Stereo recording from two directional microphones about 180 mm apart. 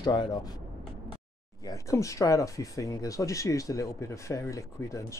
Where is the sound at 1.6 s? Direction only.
15° left (ahead or behind).